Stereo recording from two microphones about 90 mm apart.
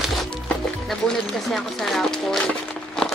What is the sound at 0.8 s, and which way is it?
Speech, 5° left (ahead or behind).